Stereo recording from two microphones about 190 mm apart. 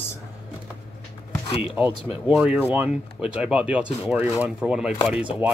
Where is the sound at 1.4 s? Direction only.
30° left (ahead or behind).